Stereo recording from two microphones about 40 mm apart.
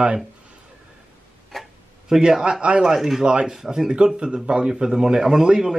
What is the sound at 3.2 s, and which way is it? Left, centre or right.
A man's voice, right.